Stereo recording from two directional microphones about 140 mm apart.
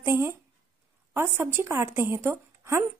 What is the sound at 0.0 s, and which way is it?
A woman's voice, 20° right (ahead or behind).